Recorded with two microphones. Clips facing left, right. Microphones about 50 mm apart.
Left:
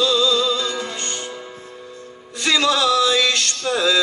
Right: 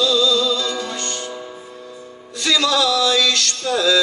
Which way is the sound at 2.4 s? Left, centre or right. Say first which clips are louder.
Even; left.